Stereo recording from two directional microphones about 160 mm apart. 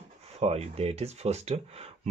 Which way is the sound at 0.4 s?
40° right (ahead or behind).